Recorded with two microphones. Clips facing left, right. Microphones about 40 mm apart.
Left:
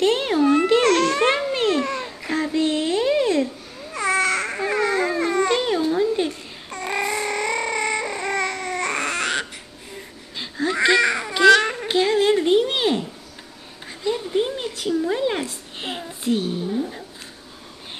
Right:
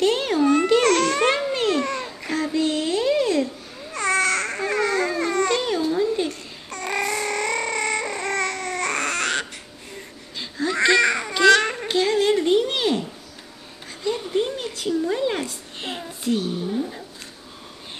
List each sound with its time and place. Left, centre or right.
0.0 s babbling: centre
2.3 s child singing: centre
3.9 s babbling: centre
10.3 s baby cry: centre
11.9 s a sound: centre
14.0 s a sound: centre